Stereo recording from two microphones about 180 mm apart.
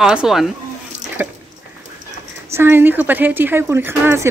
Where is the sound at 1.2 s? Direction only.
10° right (ahead or behind).